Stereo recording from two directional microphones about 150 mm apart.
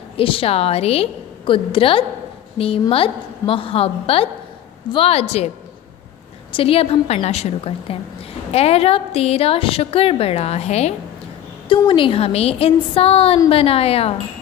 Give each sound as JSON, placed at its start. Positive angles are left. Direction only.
{"t": 0.2, "sound": "a woman's voice", "side_deg": 35}
{"t": 6.5, "sound": "a woman's voice", "side_deg": 40}
{"t": 11.7, "sound": "a woman's voice", "side_deg": 35}